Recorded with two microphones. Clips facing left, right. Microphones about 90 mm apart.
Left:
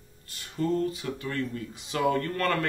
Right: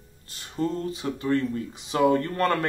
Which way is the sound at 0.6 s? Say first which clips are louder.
Even; 30° right (ahead or behind).